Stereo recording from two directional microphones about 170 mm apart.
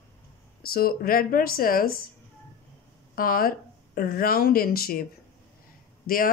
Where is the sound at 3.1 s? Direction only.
60° left (ahead or behind).